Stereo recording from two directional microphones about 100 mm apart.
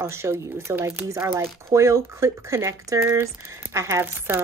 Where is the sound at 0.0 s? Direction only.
25° right (ahead or behind).